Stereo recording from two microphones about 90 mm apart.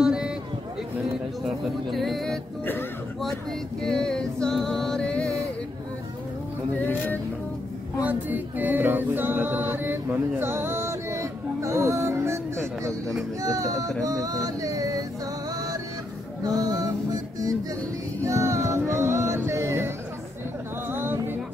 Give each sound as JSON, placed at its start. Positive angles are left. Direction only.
{"t": 0.0, "sound": "a sound", "side_deg": -10}
{"t": 1.9, "sound": "speech", "side_deg": 0}
{"t": 3.8, "sound": "a sound", "side_deg": 5}
{"t": 6.8, "sound": "speech", "side_deg": 20}
{"t": 8.0, "sound": "music", "side_deg": -20}
{"t": 13.4, "sound": "speech", "side_deg": -40}
{"t": 14.0, "sound": "music", "side_deg": -45}
{"t": 16.4, "sound": "music", "side_deg": -40}
{"t": 18.2, "sound": "music", "side_deg": -30}
{"t": 20.9, "sound": "music", "side_deg": -25}